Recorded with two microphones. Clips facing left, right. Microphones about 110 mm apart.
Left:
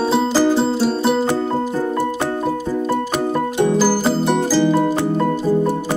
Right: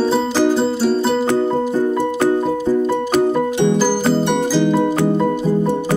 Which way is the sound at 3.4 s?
5° left (ahead or behind).